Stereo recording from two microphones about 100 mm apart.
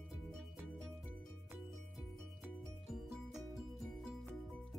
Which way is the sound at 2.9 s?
5° right (ahead or behind).